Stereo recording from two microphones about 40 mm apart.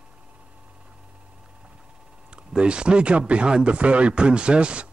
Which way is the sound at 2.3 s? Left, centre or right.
Right.